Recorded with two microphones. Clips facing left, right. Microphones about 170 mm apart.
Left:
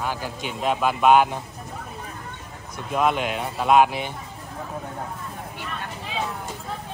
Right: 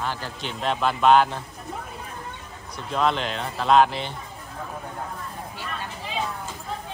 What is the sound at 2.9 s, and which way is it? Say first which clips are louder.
Speech: left 2 dB; 10° left (ahead or behind).